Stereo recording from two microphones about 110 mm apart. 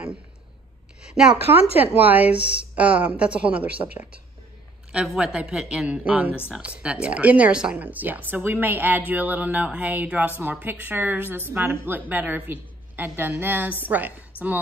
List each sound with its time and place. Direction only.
1.1 s a woman's voice: 5° right (ahead or behind)